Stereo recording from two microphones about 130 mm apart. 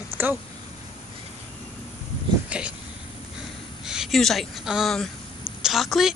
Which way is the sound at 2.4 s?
10° right (ahead or behind).